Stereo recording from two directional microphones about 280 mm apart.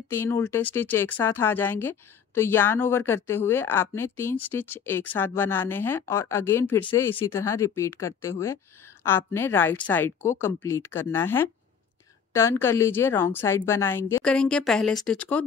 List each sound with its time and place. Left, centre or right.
0.1 s speech: centre